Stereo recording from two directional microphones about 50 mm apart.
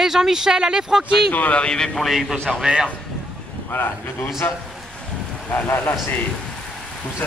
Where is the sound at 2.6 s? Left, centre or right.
Centre.